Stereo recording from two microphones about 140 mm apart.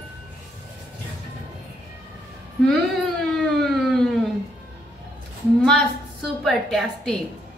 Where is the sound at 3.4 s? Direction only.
Centre (ahead or behind).